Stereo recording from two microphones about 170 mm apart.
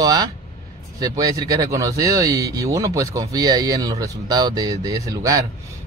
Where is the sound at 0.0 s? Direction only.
20° right (ahead or behind).